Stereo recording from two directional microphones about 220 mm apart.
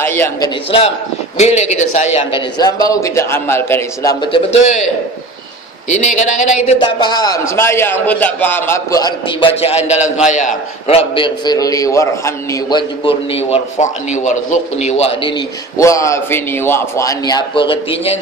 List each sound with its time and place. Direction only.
0.0 s a man's voice: 10° left (ahead or behind)
0.7 s a man's voice: 25° left (ahead or behind)
2.6 s a man's voice: 15° left (ahead or behind)
4.2 s a man's voice: 25° left (ahead or behind)
5.9 s a man's voice: 35° left (ahead or behind)